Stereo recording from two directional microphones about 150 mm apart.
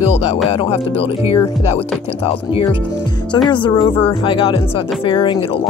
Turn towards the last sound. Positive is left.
turn(degrees=35)  # may be behind; listen again after turning